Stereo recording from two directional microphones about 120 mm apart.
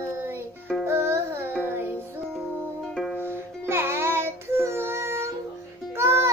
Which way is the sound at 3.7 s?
20° right (ahead or behind).